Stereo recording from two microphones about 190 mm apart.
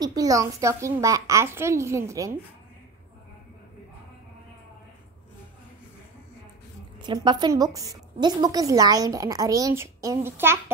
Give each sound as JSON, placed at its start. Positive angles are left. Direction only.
{"t": 0.0, "sound": "a woman's voice", "side_deg": -20}
{"t": 7.0, "sound": "a woman's voice", "side_deg": -25}